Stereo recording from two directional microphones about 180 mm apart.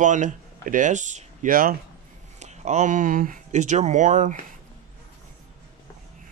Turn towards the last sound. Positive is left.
turn(degrees=-45)  # may be behind; listen again after turning